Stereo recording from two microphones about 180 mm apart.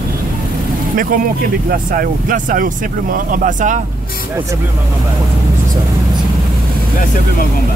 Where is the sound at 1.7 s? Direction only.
50° right (ahead or behind).